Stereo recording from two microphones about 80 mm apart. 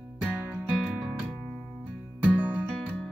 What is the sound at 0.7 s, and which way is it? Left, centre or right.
Music, centre.